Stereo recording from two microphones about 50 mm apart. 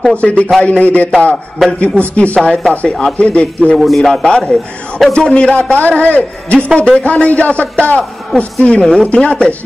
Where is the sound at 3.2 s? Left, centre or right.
Left.